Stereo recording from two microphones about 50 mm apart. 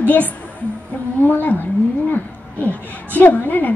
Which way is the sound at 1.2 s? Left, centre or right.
Left.